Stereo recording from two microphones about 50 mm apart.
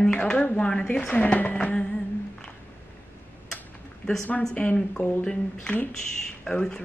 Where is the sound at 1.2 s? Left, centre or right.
Left.